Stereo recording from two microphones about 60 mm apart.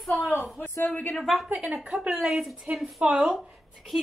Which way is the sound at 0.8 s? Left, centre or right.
Left.